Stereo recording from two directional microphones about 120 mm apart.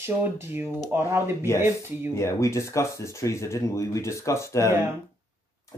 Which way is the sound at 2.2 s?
25° left (ahead or behind).